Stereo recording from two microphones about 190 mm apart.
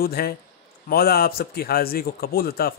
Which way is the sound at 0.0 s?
55° left (ahead or behind).